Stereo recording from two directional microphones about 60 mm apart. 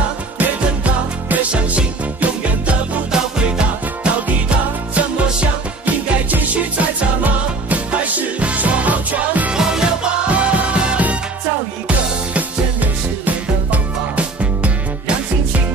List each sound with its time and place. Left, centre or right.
0.7 s music: right
9.5 s music: centre
10.2 s music: right
12.4 s music: right